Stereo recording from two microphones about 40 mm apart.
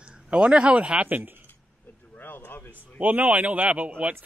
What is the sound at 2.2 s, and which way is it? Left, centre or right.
Speech, left.